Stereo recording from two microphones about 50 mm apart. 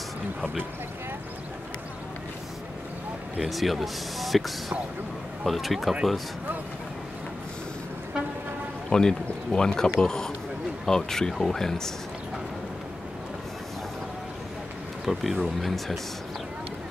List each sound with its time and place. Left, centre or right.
3.3 s speech: centre
8.9 s speech: centre
15.0 s speech: centre